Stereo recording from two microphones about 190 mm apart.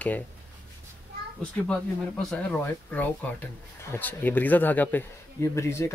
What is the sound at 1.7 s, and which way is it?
Speech, 5° left (ahead or behind).